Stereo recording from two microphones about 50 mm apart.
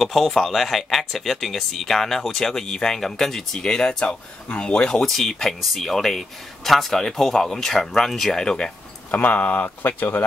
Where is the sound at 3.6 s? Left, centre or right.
Centre.